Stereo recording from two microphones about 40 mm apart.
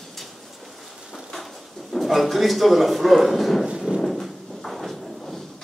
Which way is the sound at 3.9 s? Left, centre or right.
Right.